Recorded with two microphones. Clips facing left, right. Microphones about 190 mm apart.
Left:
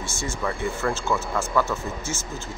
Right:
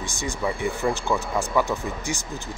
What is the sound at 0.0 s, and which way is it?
Speech, 15° right (ahead or behind).